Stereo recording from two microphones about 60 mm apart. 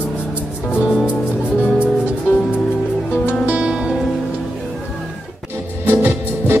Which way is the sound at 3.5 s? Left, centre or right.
Centre.